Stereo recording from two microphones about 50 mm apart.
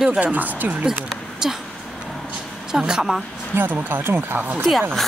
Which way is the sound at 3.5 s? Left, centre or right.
Right.